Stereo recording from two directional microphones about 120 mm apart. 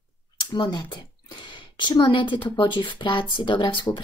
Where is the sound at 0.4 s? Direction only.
35° left (ahead or behind).